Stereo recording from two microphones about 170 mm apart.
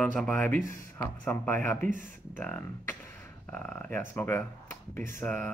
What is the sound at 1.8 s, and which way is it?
Speech, 50° right (ahead or behind).